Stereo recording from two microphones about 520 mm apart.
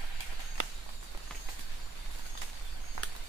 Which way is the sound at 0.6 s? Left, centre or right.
Right.